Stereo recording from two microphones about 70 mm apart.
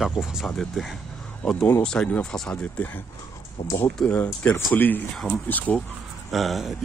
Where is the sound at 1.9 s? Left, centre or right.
Left.